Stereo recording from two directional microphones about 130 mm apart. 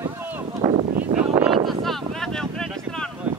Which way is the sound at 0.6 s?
25° right (ahead or behind).